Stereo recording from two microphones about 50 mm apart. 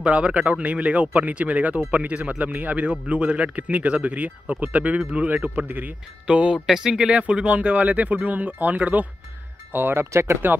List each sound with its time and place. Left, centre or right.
0.0 s a man's voice: right
6.2 s speech: right
7.1 s a man's voice: right
9.7 s speech: right
9.9 s speech: right